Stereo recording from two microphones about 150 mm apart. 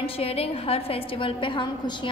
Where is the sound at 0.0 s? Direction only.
40° left (ahead or behind).